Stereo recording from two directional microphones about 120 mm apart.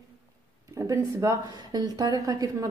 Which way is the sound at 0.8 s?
30° right (ahead or behind).